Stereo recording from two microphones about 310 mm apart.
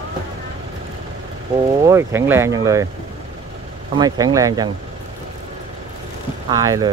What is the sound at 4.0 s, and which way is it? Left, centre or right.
Speech, centre.